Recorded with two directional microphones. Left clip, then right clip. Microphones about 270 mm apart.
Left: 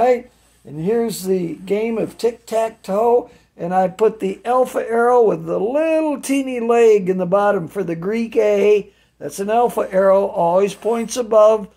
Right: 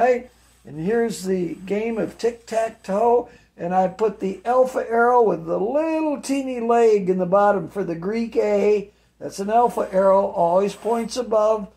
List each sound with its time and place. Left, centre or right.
0.8 s speech: left